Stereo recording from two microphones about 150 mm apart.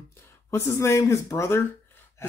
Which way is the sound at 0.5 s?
20° left (ahead or behind).